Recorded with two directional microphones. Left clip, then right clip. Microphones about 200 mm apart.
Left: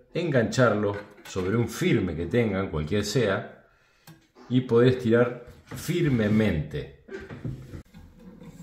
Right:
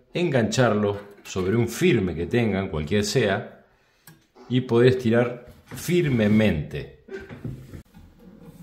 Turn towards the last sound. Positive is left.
turn(degrees=-60)  # may be behind; listen again after turning